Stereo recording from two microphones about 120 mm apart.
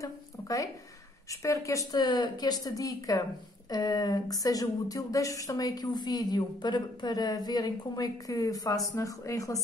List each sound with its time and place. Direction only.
0.0 s speech: 30° left (ahead or behind)